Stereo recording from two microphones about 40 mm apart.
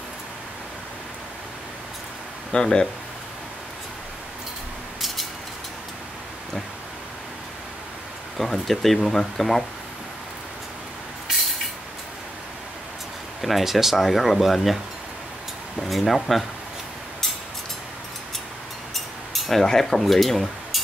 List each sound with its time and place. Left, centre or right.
2.5 s speech: centre
8.4 s speech: centre
13.4 s speech: centre
15.8 s speech: centre
18.9 s a sound: centre
19.6 s speech: centre